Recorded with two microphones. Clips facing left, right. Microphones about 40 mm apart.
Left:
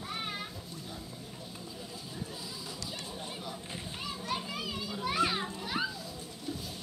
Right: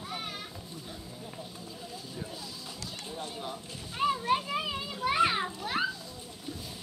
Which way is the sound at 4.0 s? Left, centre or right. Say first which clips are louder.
Right 11 dB; right.